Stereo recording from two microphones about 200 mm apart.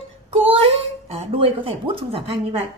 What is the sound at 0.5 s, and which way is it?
Speech, 30° right (ahead or behind).